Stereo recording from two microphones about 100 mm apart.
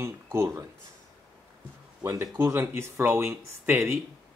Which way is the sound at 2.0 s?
30° right (ahead or behind).